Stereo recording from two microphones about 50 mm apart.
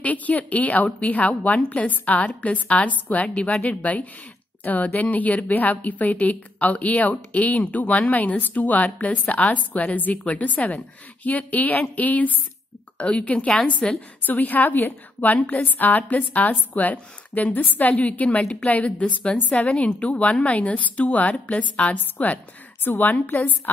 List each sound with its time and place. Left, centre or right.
0.0 s a woman's voice: left
13.8 s a woman's voice: centre
14.2 s a woman's voice: left